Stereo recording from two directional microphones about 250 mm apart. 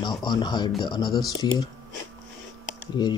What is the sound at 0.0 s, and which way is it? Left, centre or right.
Speech, centre.